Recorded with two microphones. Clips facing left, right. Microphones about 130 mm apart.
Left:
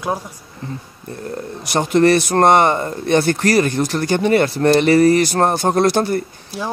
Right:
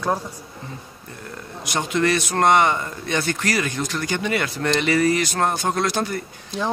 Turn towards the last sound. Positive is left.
turn(degrees=5)  # may be behind; listen again after turning